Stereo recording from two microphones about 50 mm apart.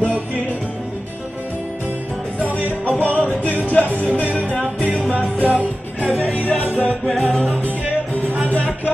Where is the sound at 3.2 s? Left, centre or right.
Left.